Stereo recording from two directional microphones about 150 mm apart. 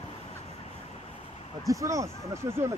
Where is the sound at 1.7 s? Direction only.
20° right (ahead or behind).